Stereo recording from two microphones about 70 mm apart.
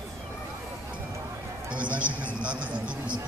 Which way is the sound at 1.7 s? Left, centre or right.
Centre.